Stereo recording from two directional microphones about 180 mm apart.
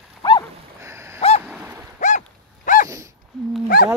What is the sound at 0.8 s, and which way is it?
Boat, 15° right (ahead or behind).